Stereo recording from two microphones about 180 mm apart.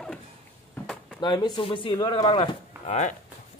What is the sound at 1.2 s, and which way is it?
A man's voice, 25° left (ahead or behind).